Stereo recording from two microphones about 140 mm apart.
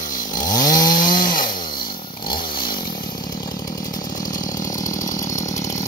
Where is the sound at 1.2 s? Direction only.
80° left.